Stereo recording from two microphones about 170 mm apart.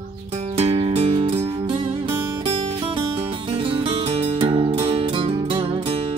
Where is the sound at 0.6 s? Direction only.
35° right (ahead or behind).